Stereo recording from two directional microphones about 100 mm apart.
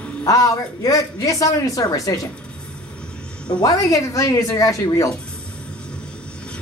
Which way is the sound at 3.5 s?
40° left (ahead or behind).